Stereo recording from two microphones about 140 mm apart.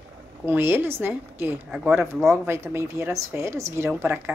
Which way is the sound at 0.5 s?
15° right (ahead or behind).